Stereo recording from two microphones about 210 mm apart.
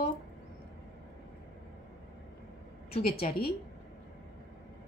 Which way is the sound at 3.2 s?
45° left (ahead or behind).